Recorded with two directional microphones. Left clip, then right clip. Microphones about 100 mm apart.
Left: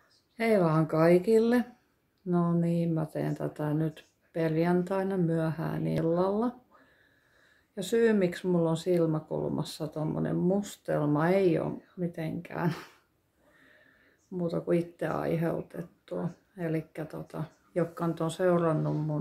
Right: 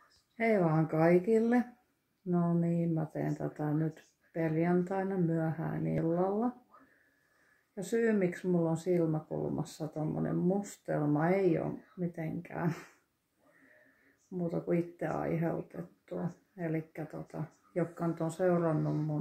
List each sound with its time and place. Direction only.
0.4 s speech: 20° left (ahead or behind)
7.7 s speech: 25° left (ahead or behind)
14.3 s speech: 20° left (ahead or behind)